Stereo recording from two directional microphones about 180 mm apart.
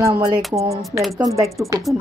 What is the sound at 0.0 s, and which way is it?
Music, 20° right (ahead or behind).